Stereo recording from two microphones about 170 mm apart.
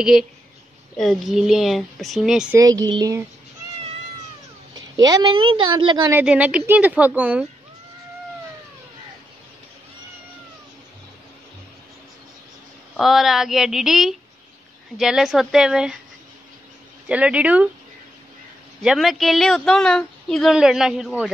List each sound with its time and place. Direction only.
0.0 s speech: centre (ahead or behind)
2.5 s a woman's voice: 20° right (ahead or behind)
5.0 s a woman's voice: 25° right (ahead or behind)
6.1 s a woman's voice: 10° right (ahead or behind)
12.9 s speech: centre (ahead or behind)
17.1 s a woman's voice: 5° right (ahead or behind)
18.8 s speech: centre (ahead or behind)